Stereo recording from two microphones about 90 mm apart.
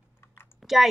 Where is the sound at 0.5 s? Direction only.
5° right (ahead or behind).